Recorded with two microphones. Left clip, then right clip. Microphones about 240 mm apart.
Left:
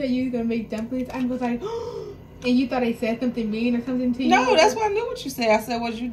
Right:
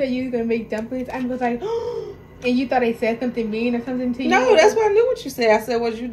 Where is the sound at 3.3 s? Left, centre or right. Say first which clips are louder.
Right 3 dB; right.